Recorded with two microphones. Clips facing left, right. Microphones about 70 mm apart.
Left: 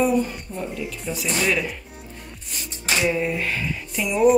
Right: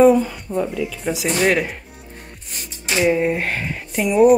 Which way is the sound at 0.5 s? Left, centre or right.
Right.